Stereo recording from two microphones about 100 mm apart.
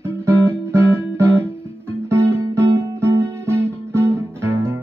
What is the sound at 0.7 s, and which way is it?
Music, 25° right (ahead or behind).